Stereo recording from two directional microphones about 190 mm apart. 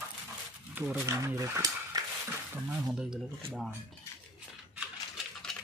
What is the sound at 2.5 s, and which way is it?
Speech, 10° right (ahead or behind).